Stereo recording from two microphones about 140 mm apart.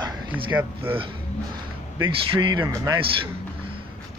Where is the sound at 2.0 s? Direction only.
35° right (ahead or behind).